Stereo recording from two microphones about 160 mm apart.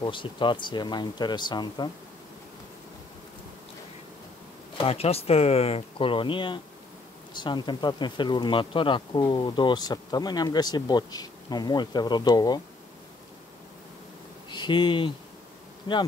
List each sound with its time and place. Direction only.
0.0 s speech: 30° left (ahead or behind)
4.7 s speech: 40° left (ahead or behind)
14.5 s speech: 30° left (ahead or behind)